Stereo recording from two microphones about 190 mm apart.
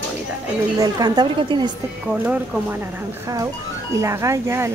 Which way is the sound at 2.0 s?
5° right (ahead or behind).